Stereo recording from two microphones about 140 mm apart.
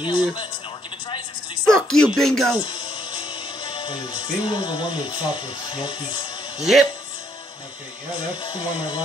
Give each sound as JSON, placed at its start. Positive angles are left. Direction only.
{"t": 0.0, "sound": "a man's voice", "side_deg": 30}
{"t": 1.7, "sound": "speech", "side_deg": 5}
{"t": 2.6, "sound": "speech", "side_deg": 35}
{"t": 6.6, "sound": "speech", "side_deg": 0}
{"t": 8.4, "sound": "speech", "side_deg": 35}